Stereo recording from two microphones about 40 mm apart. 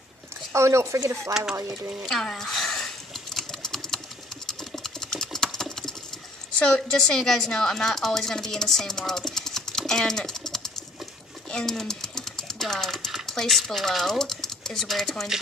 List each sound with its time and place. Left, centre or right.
1.3 s speech: centre
2.0 s a sound: centre
4.5 s sewing machine: centre
6.6 s a woman's voice: left
11.5 s sewing machine: centre
13.3 s a woman's voice: centre